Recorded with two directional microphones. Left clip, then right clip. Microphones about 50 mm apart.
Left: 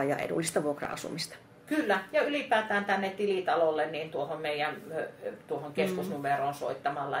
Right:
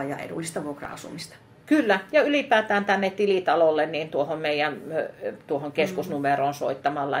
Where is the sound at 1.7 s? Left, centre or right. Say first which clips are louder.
Right 7 dB; right.